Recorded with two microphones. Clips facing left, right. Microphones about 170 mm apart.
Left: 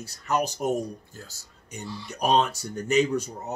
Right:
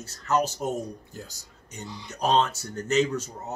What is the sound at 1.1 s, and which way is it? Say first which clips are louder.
Speech: right 4 dB; 15° right (ahead or behind).